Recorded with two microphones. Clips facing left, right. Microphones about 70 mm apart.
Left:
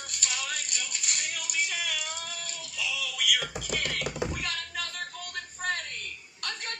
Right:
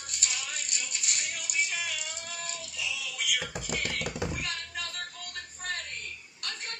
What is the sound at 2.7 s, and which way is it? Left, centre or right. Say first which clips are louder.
Synthetic singing: left 5 dB; left.